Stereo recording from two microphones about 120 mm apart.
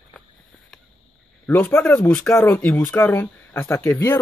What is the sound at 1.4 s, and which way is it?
A man's voice, 15° left (ahead or behind).